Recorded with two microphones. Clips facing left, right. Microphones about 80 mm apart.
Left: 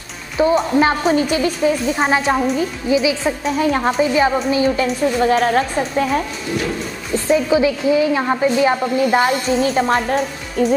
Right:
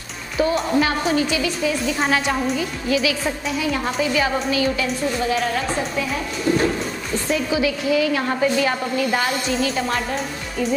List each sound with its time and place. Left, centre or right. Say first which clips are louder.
0.6 s a woman's voice: left 4 dB; left
2.9 s a woman's voice: left 4 dB; left
3.4 s a woman's voice: left 8 dB; left
4.0 s a woman's voice: left 4 dB; left
4.8 s a woman's voice: left 6 dB; left
7.2 s a woman's voice: left 7 dB; left
9.5 s a woman's voice: left 6 dB; left